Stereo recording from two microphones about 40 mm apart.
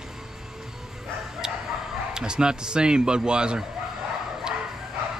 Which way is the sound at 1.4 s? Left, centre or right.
Centre.